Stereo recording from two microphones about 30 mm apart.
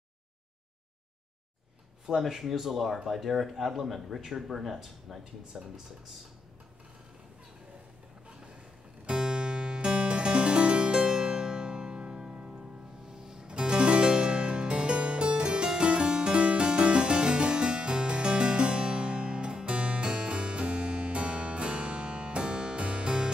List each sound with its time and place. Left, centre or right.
2.0 s speech: centre
9.0 s music: right
13.5 s harpsichord: right
22.8 s music: right